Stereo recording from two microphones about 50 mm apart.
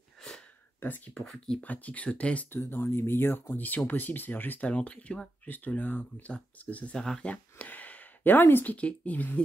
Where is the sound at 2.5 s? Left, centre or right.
Left.